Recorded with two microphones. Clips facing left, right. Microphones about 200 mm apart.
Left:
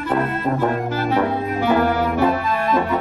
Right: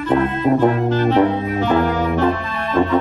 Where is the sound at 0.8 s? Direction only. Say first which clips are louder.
Right 5 dB; 10° left (ahead or behind).